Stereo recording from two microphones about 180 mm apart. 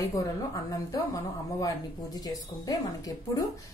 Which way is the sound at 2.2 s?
20° left (ahead or behind).